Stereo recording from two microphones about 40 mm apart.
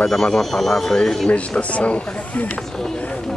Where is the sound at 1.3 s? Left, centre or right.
Left.